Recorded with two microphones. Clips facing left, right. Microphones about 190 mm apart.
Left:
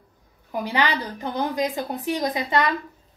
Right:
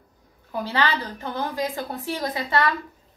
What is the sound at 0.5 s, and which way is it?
A woman's voice, 15° left (ahead or behind).